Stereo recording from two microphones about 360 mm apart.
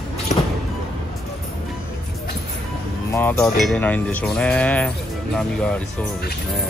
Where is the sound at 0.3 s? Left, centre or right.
Centre.